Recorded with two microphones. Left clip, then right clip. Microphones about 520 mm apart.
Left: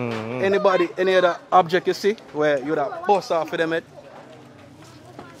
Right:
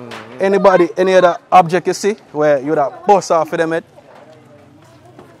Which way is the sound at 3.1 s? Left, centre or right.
Right.